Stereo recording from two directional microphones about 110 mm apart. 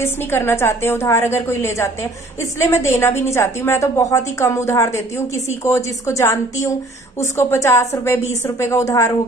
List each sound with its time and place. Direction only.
0.0 s a woman's voice: 20° left (ahead or behind)